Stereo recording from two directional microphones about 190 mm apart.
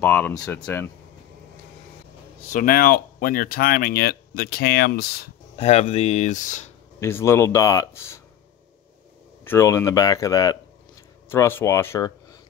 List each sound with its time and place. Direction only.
0.0 s speech: 10° left (ahead or behind)
2.5 s speech: 50° left (ahead or behind)
5.6 s speech: 35° left (ahead or behind)
7.0 s speech: 15° left (ahead or behind)
9.4 s speech: 15° left (ahead or behind)